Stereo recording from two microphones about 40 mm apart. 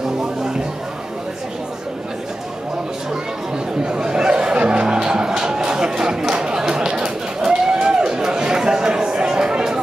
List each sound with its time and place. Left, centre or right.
3.8 s music: right